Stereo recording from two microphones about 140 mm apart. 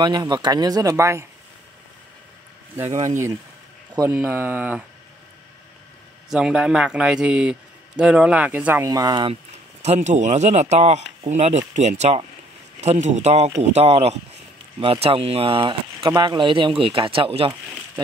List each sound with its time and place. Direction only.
0.0 s speech: 30° right (ahead or behind)
2.7 s speech: 15° right (ahead or behind)
4.1 s a man's voice: 15° right (ahead or behind)
6.3 s a man's voice: 5° right (ahead or behind)
8.8 s speech: 25° right (ahead or behind)
9.3 s speech: 55° right (ahead or behind)